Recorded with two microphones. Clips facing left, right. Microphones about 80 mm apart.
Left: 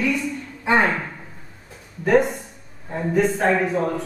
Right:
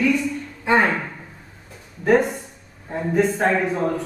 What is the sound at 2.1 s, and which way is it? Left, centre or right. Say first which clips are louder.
A man's voice: even; centre.